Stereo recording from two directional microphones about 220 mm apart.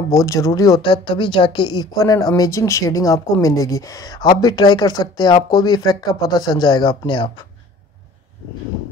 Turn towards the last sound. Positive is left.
turn(degrees=20)  # may be behind; listen again after turning